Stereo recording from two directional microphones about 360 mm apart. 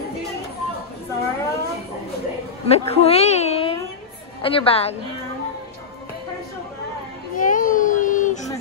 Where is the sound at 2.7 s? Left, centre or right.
Centre.